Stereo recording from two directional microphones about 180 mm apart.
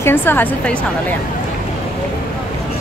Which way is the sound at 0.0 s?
10° left (ahead or behind).